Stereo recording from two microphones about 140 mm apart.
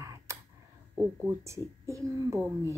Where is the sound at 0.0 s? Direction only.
20° right (ahead or behind).